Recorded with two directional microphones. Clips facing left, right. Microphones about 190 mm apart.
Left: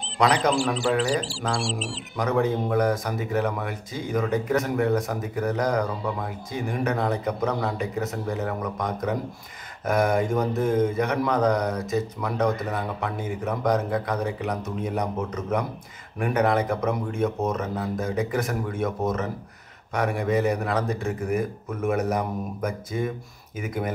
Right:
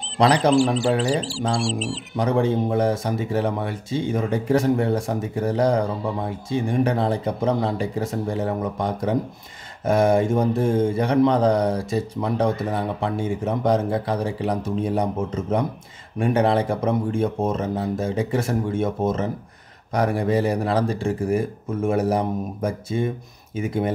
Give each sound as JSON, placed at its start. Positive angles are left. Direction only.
{"t": 0.2, "sound": "a man's voice", "side_deg": -30}
{"t": 1.6, "sound": "speech", "side_deg": 0}
{"t": 2.1, "sound": "speech", "side_deg": -30}